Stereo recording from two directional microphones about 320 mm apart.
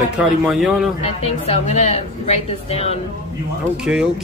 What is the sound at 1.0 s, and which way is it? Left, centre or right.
A woman's voice, centre.